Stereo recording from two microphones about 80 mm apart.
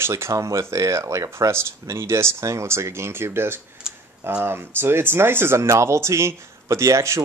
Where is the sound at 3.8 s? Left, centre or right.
Centre.